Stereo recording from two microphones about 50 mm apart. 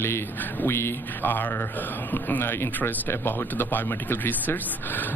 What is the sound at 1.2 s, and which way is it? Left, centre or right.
Speech, left.